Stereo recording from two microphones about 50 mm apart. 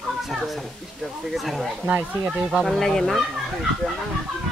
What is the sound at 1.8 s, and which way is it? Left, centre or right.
Speech, right.